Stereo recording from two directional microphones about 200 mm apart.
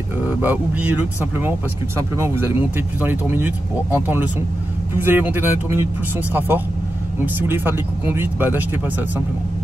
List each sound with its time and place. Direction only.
0.4 s speech: 10° right (ahead or behind)